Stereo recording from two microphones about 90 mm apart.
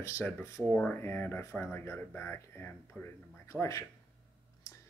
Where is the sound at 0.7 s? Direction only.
10° left (ahead or behind).